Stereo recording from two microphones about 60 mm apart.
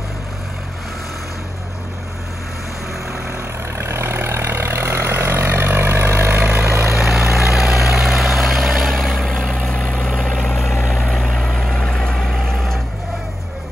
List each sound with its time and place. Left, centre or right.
3.1 s vehicle: right
7.0 s vehicle: centre
11.1 s vehicle: centre